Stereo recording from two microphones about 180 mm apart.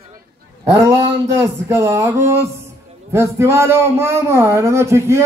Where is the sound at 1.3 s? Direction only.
15° right (ahead or behind).